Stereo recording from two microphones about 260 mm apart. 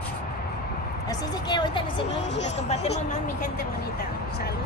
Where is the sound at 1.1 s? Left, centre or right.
Centre.